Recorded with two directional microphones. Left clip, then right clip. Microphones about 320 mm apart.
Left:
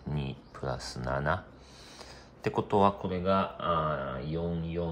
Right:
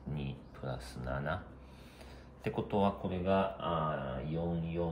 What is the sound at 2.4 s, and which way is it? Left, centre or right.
Speech, left.